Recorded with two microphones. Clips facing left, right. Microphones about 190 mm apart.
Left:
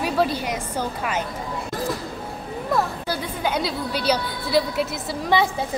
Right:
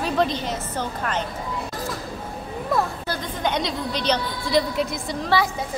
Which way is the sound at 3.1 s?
10° left (ahead or behind).